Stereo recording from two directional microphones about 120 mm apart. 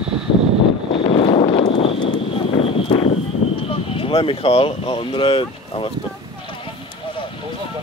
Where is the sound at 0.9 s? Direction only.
50° left (ahead or behind).